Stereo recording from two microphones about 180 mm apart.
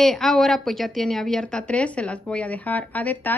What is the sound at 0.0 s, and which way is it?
A woman's voice, centre (ahead or behind).